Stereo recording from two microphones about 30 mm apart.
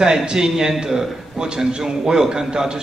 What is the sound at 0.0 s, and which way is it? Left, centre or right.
A man's voice, right.